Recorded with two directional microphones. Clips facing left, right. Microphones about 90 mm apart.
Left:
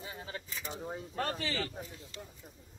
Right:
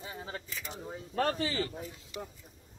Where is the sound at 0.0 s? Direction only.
30° right (ahead or behind).